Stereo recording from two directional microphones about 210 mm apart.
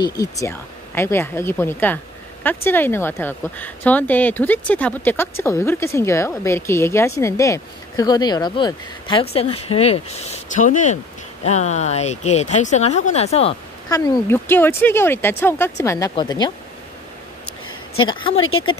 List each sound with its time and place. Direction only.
0.0 s speech: 15° left (ahead or behind)
13.8 s speech: 20° left (ahead or behind)
18.0 s speech: 25° left (ahead or behind)